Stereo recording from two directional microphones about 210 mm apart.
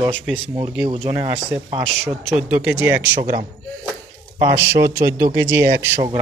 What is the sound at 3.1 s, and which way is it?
Speech, 40° right (ahead or behind).